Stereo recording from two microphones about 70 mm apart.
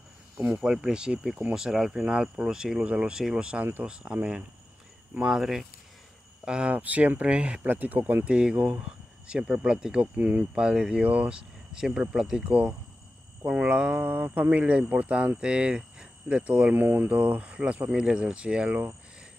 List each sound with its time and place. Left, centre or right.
0.4 s speech: centre
12.4 s speech: centre
13.4 s cricket: right
13.7 s speech: centre
14.0 s speech: right
16.8 s speech: right
17.1 s speech: centre